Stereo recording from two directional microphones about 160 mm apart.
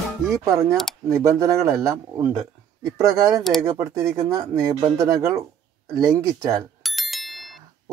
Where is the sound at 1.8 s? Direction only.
20° right (ahead or behind).